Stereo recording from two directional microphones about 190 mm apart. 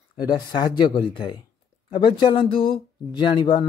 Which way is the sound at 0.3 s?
25° left (ahead or behind).